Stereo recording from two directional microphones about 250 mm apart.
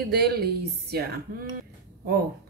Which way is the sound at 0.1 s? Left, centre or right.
Right.